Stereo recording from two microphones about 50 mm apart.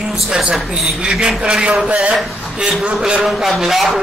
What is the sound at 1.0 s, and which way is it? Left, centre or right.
A man's voice, centre.